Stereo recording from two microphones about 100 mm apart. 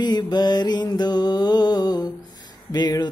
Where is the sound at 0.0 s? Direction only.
45° left (ahead or behind).